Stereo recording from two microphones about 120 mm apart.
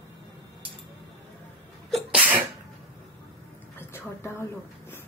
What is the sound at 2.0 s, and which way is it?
Sneeze, 10° right (ahead or behind).